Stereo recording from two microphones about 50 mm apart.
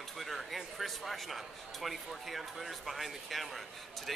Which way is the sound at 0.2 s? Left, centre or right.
Centre.